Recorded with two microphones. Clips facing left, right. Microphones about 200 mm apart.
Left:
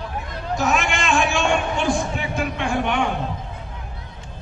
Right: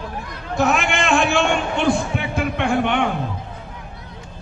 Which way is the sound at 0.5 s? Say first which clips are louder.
Right 3 dB; 60° right (ahead or behind).